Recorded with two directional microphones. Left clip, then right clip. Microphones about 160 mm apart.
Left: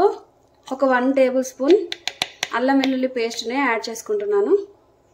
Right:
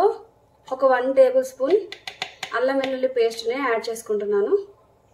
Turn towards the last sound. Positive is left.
turn(degrees=45)  # may be behind; listen again after turning